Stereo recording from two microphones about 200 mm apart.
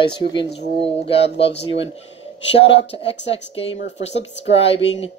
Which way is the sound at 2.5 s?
30° left (ahead or behind).